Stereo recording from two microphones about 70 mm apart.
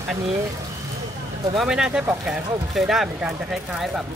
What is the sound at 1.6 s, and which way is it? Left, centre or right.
Speech, centre.